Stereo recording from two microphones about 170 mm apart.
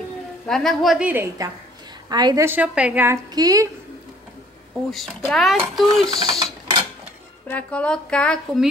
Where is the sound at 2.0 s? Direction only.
25° right (ahead or behind).